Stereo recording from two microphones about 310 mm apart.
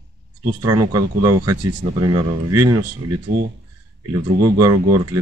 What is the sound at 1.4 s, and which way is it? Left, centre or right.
Speech, right.